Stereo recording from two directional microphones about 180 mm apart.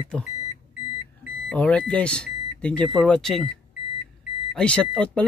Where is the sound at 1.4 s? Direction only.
5° left (ahead or behind).